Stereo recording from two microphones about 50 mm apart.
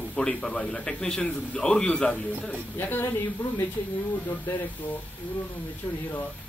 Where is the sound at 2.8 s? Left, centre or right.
Left.